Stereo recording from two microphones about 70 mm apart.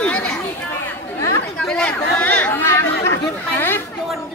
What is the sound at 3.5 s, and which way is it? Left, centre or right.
Chatter, left.